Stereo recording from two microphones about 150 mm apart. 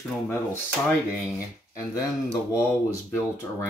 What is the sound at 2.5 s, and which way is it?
Speech, 20° left (ahead or behind).